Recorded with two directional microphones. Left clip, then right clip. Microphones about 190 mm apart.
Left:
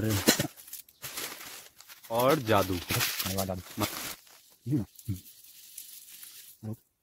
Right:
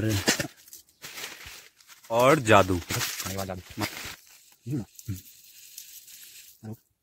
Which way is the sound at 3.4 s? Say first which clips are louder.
Even; 15° left (ahead or behind).